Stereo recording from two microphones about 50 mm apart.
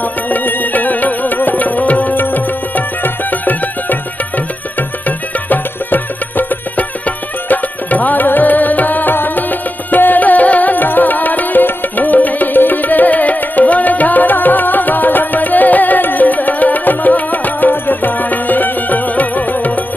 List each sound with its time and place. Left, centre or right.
0.3 s music: left